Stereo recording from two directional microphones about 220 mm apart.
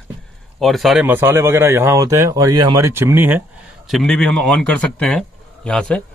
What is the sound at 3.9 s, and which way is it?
A man's voice, centre (ahead or behind).